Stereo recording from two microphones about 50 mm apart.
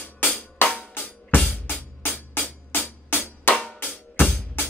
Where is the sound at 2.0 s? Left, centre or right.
Left.